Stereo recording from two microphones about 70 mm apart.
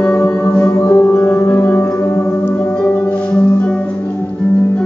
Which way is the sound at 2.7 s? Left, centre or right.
Centre.